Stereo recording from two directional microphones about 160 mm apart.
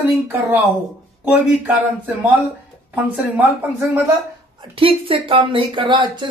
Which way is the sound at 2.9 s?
10° right (ahead or behind).